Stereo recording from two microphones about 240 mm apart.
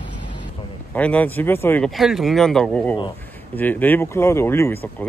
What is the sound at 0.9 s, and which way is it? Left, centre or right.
Speech, centre.